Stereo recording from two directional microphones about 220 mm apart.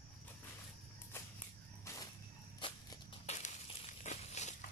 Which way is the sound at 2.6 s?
20° left (ahead or behind).